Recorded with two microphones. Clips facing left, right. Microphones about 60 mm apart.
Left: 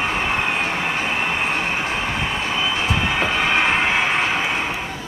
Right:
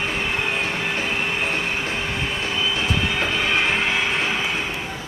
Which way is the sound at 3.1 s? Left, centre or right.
Left.